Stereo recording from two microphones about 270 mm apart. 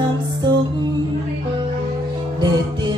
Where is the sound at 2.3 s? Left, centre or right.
Centre.